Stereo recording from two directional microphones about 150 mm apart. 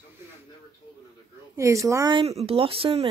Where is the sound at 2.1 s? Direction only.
40° right (ahead or behind).